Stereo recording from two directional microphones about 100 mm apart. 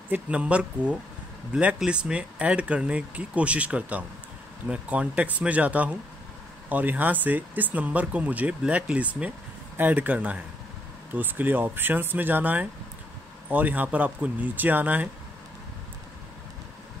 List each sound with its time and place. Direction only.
0.1 s speech: 10° right (ahead or behind)